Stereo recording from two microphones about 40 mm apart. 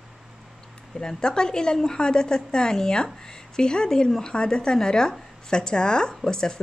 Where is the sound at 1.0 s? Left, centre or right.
Centre.